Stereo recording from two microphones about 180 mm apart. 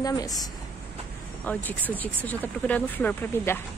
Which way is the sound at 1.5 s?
10° left (ahead or behind).